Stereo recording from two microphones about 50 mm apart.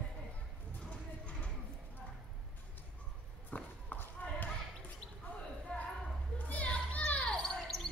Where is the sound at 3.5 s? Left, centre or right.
Left.